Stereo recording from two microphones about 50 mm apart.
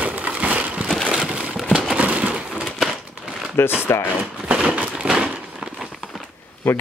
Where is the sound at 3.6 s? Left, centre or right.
Left.